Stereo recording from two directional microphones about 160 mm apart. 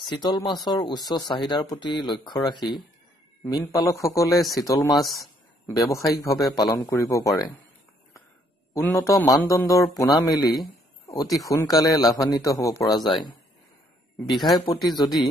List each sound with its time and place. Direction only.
0.0 s speech: 25° left (ahead or behind)
4.9 s speech: centre (ahead or behind)
5.9 s speech: 20° left (ahead or behind)
8.7 s speech: 15° left (ahead or behind)
12.9 s speech: centre (ahead or behind)
14.3 s speech: centre (ahead or behind)
14.7 s speech: 25° left (ahead or behind)